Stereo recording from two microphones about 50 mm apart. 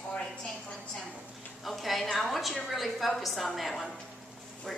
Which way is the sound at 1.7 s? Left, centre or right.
Centre.